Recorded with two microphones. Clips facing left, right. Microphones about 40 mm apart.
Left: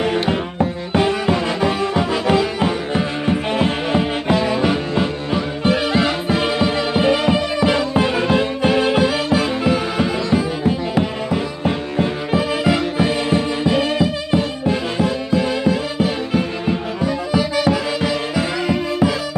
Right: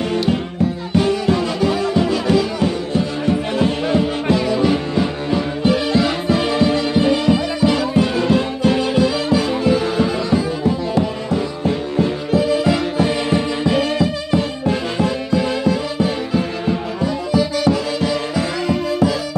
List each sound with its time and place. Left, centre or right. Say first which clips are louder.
0.1 s music: even; left
12.7 s music: even; centre